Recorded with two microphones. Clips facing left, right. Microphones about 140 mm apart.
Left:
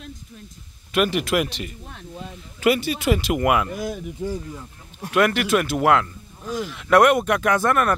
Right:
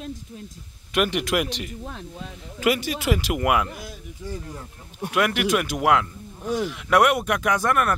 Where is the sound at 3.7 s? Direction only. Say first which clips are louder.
Left 10 dB; 50° left (ahead or behind).